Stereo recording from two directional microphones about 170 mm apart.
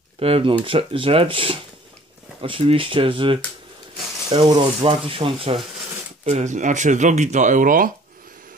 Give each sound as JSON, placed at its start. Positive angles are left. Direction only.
{"t": 0.2, "sound": "speech", "side_deg": -35}
{"t": 6.2, "sound": "speech", "side_deg": -45}